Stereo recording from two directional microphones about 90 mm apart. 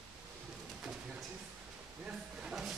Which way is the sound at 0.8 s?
5° right (ahead or behind).